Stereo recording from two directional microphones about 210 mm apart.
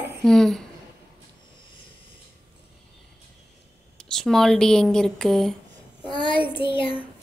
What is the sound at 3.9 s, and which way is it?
Speech, centre (ahead or behind).